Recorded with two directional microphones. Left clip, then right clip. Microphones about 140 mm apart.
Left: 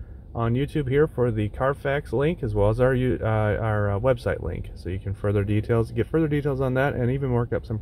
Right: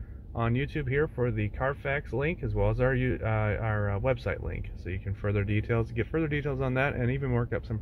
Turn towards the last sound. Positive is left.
turn(degrees=35)  # may be behind; listen again after turning